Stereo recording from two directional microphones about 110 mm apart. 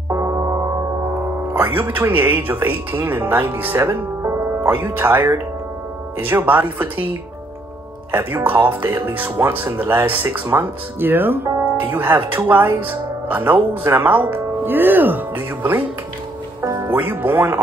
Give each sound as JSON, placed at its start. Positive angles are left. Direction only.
{"t": 0.1, "sound": "gong", "side_deg": -25}
{"t": 1.5, "sound": "speech", "side_deg": -15}
{"t": 8.1, "sound": "speech", "side_deg": -20}
{"t": 16.8, "sound": "speech", "side_deg": -15}